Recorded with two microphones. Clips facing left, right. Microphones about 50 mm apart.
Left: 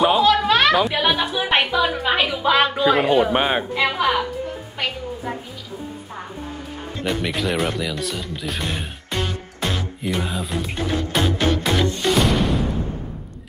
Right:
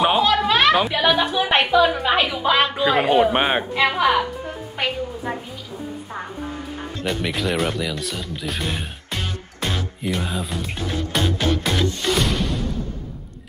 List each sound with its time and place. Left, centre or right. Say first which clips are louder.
0.2 s a sound: left 1 dB; centre
1.1 s a woman's voice: right 1 dB; centre
7.1 s speech: left 1 dB; centre
12.0 s music: left 3 dB; centre